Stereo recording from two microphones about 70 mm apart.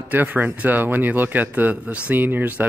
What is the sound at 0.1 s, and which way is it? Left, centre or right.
Speech, right.